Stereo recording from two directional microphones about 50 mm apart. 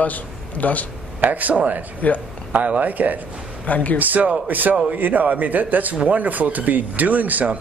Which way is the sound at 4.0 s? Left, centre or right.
Right.